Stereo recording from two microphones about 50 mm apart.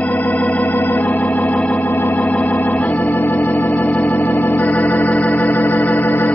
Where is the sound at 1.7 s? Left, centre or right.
Left.